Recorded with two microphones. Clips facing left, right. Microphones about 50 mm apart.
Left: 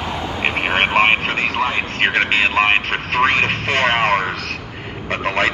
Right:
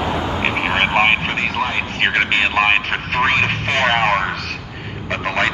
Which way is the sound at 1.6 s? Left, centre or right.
Left.